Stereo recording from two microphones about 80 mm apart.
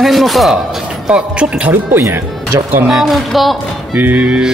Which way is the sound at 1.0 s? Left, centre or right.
Centre.